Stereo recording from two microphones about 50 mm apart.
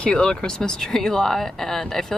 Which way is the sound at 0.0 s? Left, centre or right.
Centre.